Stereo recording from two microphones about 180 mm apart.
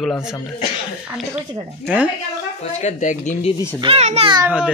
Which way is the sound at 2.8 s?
40° left (ahead or behind).